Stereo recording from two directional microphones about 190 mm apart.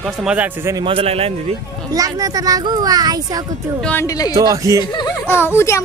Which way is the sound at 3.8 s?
15° left (ahead or behind).